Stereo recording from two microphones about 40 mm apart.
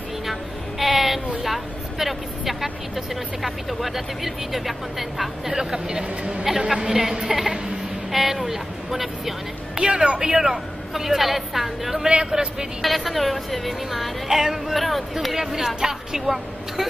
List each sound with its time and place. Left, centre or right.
0.3 s a sound: centre
1.4 s vehicle: centre
3.4 s speech: centre
5.5 s a woman's voice: centre
8.1 s speech: centre
9.8 s speech: centre
10.3 s a woman's voice: centre
12.8 s a woman's voice: centre